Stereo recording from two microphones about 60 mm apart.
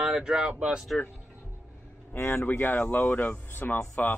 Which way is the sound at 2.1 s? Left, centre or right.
Left.